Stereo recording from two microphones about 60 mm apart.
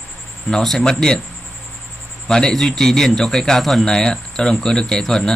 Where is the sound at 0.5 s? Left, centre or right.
Centre.